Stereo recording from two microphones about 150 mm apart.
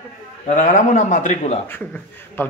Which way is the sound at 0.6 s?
55° left (ahead or behind).